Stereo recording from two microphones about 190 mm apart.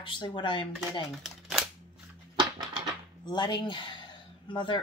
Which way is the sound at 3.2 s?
25° left (ahead or behind).